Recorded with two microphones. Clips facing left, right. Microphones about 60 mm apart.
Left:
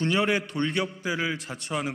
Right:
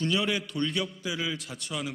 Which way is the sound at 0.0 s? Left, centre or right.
Left.